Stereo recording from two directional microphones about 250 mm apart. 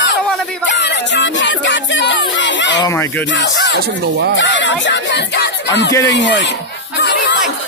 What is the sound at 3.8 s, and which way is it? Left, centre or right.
Speech, right.